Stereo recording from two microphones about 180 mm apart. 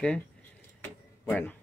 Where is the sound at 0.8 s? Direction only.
10° left (ahead or behind).